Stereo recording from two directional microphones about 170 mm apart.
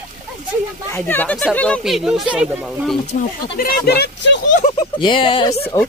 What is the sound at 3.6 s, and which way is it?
Speech, 65° left (ahead or behind).